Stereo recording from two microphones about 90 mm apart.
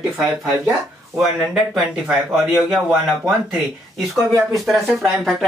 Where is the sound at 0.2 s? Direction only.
20° right (ahead or behind).